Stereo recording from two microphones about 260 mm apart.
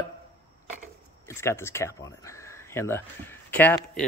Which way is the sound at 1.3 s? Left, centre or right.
Centre.